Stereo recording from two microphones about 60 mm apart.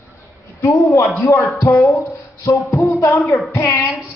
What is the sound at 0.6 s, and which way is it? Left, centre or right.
A man's voice, left.